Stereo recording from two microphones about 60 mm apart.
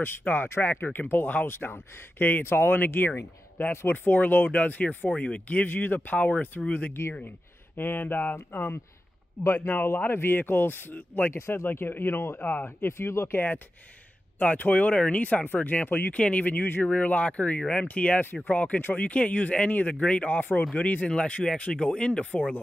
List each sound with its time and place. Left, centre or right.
0.0 s speech: left
11.3 s speech: left
14.4 s speech: left
16.6 s speech: left
16.9 s speech: left